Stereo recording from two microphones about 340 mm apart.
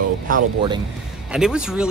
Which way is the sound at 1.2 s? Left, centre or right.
Centre.